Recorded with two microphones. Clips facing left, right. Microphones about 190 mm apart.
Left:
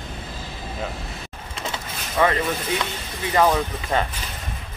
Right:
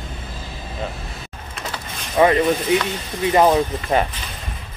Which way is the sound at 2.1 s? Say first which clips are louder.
Right 6 dB; 20° right (ahead or behind).